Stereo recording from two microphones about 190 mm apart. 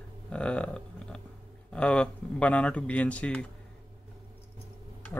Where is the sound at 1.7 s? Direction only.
5° left (ahead or behind).